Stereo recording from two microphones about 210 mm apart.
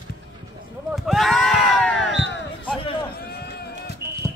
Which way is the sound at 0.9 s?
Centre (ahead or behind).